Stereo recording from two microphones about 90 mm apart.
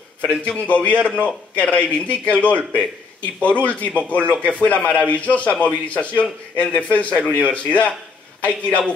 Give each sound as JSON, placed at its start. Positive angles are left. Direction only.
{"t": 0.2, "sound": "speech", "side_deg": 15}